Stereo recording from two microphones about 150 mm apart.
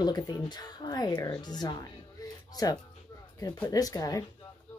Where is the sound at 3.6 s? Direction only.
25° left (ahead or behind).